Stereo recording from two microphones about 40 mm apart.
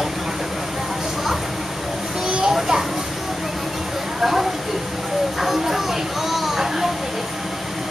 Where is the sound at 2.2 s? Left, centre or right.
Right.